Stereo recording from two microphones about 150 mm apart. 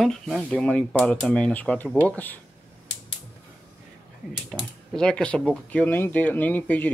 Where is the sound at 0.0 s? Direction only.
Centre (ahead or behind).